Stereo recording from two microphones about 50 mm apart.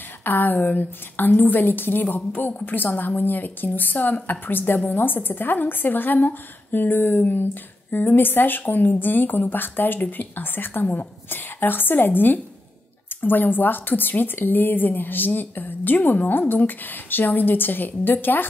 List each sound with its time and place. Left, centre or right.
0.2 s a woman's voice: left